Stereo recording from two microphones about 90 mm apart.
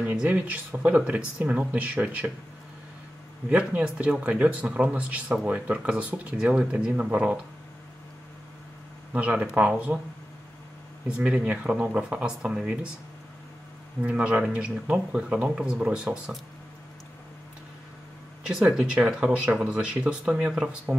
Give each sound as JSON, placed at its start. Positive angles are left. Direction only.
{"t": 0.0, "sound": "speech", "side_deg": -15}
{"t": 3.4, "sound": "speech", "side_deg": -15}
{"t": 9.1, "sound": "speech", "side_deg": -15}
{"t": 11.1, "sound": "speech", "side_deg": -10}
{"t": 14.0, "sound": "speech", "side_deg": -15}
{"t": 18.5, "sound": "speech", "side_deg": -5}